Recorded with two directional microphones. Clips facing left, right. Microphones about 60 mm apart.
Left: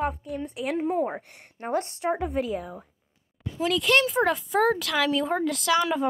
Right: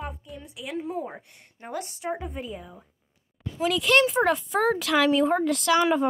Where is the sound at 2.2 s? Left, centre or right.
Left.